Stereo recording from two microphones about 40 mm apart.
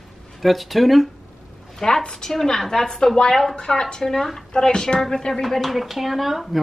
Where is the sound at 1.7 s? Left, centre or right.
Centre.